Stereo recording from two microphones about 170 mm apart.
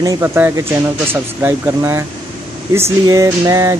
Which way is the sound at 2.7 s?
15° right (ahead or behind).